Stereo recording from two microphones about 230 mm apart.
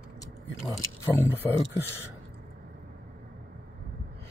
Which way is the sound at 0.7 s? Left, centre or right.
Centre.